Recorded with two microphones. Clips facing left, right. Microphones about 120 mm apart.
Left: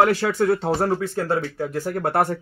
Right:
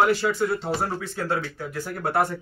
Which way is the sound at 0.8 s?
45° left (ahead or behind).